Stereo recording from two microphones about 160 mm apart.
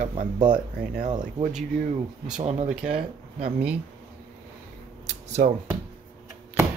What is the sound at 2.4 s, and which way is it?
Speech, 45° right (ahead or behind).